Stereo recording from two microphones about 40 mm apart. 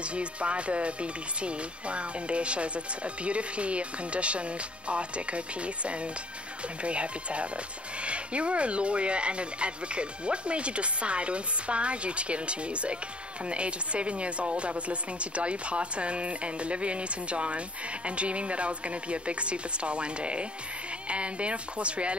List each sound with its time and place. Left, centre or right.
0.1 s speech: right
6.8 s speech: right